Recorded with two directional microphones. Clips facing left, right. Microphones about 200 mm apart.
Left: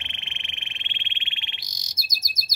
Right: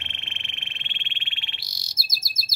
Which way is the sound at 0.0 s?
15° left (ahead or behind).